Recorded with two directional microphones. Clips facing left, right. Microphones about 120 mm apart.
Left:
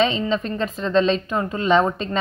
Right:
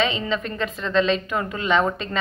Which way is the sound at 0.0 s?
35° left (ahead or behind).